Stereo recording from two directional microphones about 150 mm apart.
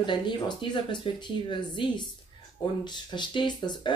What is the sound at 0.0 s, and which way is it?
Speech, 30° left (ahead or behind).